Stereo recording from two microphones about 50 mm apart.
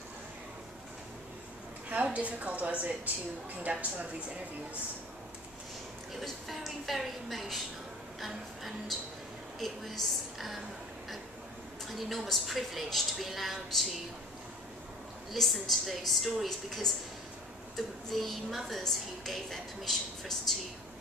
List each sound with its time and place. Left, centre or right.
2.0 s a woman's voice: right
6.2 s a woman's voice: centre
11.9 s a woman's voice: centre
15.3 s a woman's voice: centre